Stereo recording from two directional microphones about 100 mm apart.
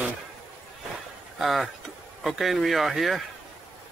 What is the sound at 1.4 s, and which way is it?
Speech, centre (ahead or behind).